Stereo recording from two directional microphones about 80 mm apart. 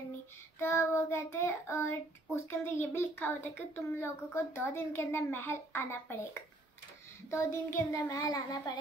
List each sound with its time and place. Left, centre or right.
0.6 s child singing: left
7.2 s child singing: left
7.7 s a child's voice: left